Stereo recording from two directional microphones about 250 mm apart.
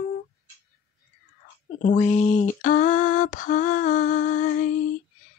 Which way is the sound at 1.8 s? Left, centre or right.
Left.